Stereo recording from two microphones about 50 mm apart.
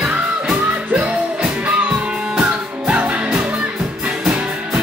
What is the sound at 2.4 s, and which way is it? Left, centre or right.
Music, right.